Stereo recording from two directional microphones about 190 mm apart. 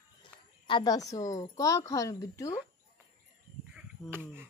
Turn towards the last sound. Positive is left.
turn(degrees=-10)  # may be behind; listen again after turning